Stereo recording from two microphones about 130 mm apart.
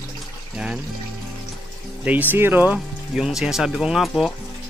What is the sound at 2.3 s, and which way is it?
Speech, 15° right (ahead or behind).